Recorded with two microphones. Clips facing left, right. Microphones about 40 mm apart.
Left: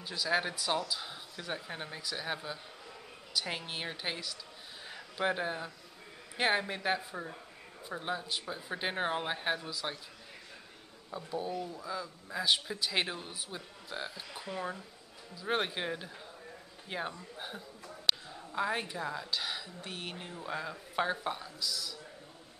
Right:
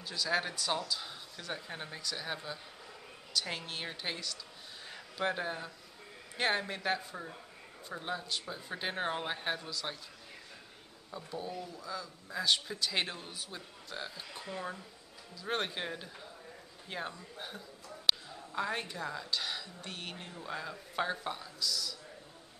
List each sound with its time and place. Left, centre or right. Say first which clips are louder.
0.0 s speech: left 1 dB; centre
4.8 s a sound: left 2 dB; centre
6.3 s speech: left 2 dB; centre
11.1 s speech: left 4 dB; centre